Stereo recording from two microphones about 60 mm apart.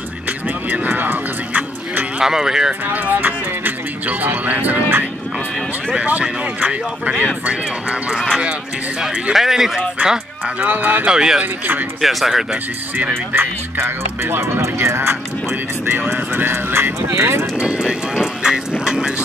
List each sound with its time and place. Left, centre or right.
0.7 s music: right
2.1 s speech: centre
2.9 s speech: right
5.9 s speech: right
8.3 s speech: centre
9.3 s speech: centre
10.4 s speech: right
11.1 s speech: centre
12.0 s speech: centre
13.3 s speech: right
17.6 s vehicle: centre